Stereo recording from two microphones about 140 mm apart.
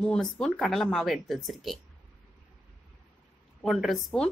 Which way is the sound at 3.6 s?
Centre (ahead or behind).